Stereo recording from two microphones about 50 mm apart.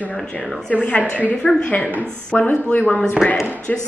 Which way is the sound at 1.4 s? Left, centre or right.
Centre.